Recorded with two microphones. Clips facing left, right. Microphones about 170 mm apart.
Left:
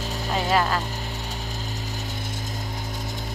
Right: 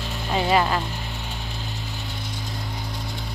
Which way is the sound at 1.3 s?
40° left (ahead or behind).